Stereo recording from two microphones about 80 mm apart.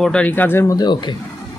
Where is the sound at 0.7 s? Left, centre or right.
Left.